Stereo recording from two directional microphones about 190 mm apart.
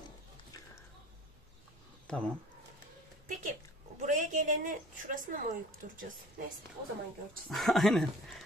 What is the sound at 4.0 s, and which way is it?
A woman's voice, 45° right (ahead or behind).